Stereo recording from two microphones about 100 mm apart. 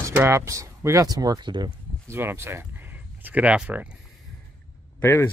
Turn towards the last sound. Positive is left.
turn(degrees=25)  # may be behind; listen again after turning